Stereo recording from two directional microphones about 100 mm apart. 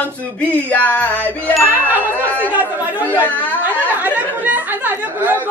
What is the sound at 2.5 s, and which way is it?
Speech, 15° right (ahead or behind).